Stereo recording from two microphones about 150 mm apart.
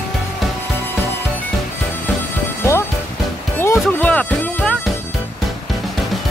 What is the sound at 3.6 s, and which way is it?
Music, 15° left (ahead or behind).